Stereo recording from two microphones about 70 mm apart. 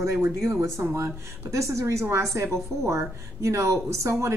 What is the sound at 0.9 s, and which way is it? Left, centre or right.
A woman's voice, right.